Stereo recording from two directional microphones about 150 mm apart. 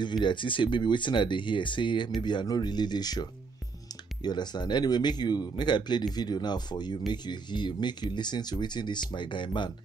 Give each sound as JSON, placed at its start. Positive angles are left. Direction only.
{"t": 0.0, "sound": "speech", "side_deg": 30}